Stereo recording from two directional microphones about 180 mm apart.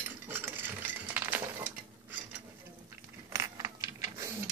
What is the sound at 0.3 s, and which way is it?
Cutlery, 10° right (ahead or behind).